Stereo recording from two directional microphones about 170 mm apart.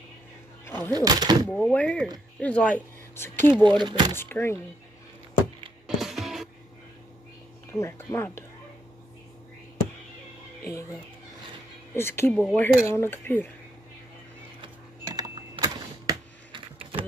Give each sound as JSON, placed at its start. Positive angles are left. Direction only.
{"t": 0.7, "sound": "a sound", "side_deg": 15}
{"t": 0.9, "sound": "speech", "side_deg": -25}
{"t": 1.5, "sound": "speech", "side_deg": 10}
{"t": 3.6, "sound": "speech", "side_deg": -25}
{"t": 4.2, "sound": "speech", "side_deg": 15}
{"t": 5.9, "sound": "music", "side_deg": 0}
{"t": 7.7, "sound": "speech", "side_deg": 15}
{"t": 11.9, "sound": "speech", "side_deg": 15}
{"t": 15.1, "sound": "a sound", "side_deg": -25}